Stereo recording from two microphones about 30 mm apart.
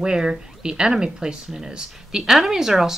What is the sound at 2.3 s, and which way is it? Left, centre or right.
Speech, centre.